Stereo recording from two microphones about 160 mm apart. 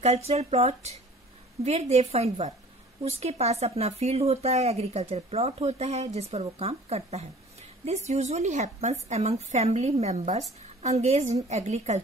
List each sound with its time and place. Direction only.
0.0 s a woman's voice: 40° right (ahead or behind)